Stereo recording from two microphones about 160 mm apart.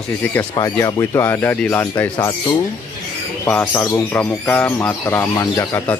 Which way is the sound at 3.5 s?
10° left (ahead or behind).